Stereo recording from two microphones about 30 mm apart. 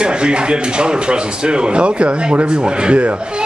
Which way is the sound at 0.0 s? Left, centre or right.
Right.